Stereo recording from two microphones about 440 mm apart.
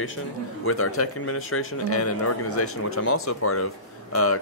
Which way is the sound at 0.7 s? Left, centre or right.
Left.